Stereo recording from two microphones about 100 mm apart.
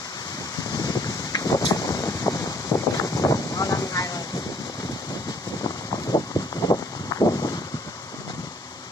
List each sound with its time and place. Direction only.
0.7 s wind: 40° left (ahead or behind)
6.1 s a sound: 40° left (ahead or behind)
6.7 s wind noise: 45° left (ahead or behind)